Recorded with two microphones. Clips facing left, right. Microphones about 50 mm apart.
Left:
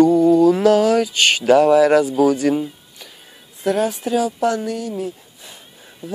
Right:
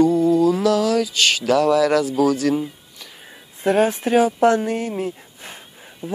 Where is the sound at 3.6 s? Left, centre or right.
Right.